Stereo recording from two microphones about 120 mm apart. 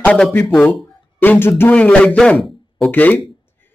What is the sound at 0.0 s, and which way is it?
A man's voice, 10° left (ahead or behind).